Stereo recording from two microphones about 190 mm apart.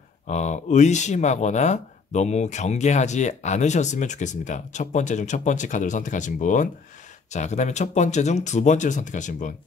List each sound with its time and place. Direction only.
0.3 s speech: 40° left (ahead or behind)